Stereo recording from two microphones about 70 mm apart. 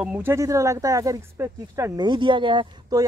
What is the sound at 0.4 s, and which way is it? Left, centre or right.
Speech, right.